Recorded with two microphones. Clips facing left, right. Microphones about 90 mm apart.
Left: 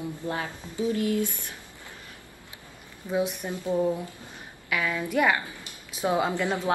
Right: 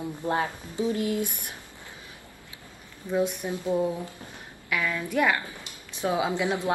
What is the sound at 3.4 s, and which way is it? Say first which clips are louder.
Speech: right 1 dB; 20° right (ahead or behind).